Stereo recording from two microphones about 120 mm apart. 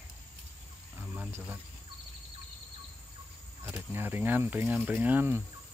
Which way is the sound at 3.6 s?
20° right (ahead or behind).